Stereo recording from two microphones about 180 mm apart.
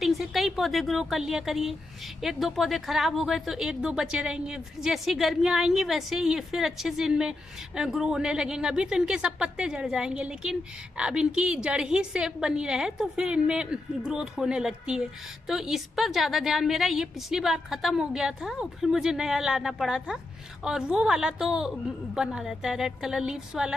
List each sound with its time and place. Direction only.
0.0 s a woman's voice: centre (ahead or behind)